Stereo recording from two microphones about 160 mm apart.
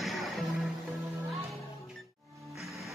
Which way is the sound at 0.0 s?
Centre (ahead or behind).